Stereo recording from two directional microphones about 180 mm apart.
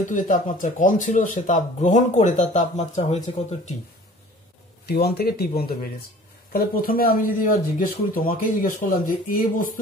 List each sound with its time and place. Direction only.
0.0 s speech: 45° left (ahead or behind)
4.8 s speech: 60° left (ahead or behind)
6.5 s speech: 55° left (ahead or behind)